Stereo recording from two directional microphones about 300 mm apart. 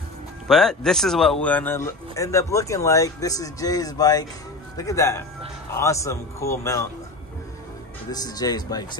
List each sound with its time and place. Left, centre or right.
0.5 s speech: centre
8.1 s speech: centre